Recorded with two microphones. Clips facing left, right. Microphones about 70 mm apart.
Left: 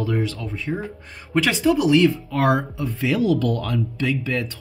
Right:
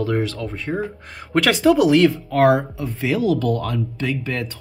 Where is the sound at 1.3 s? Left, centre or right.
Right.